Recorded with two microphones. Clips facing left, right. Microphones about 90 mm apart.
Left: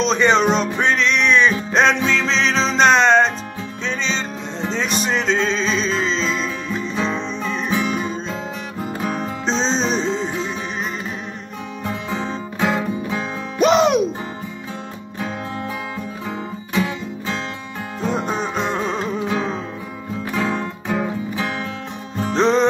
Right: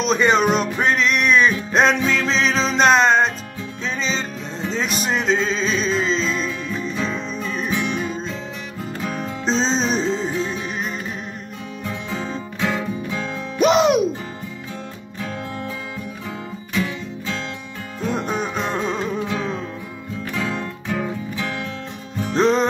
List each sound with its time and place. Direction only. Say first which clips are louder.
0.0 s music: left 1 dB; 5° right (ahead or behind)
7.0 s music: left 2 dB; 30° left (ahead or behind)
7.5 s music: left 2 dB; centre (ahead or behind)
9.5 s music: even; centre (ahead or behind)
11.8 s music: left 3 dB; 35° left (ahead or behind)
13.6 s music: left 1 dB; centre (ahead or behind)
18.6 s music: left 1 dB; centre (ahead or behind)
20.3 s music: left 4 dB; 25° left (ahead or behind)
22.3 s music: left 1 dB; centre (ahead or behind)